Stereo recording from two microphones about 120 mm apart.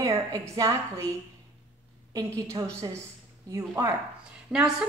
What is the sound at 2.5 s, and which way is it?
A woman's voice, 25° right (ahead or behind).